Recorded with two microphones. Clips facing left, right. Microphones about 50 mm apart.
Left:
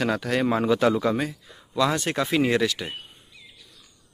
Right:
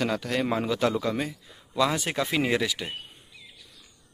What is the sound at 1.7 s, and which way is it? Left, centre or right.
Speech, centre.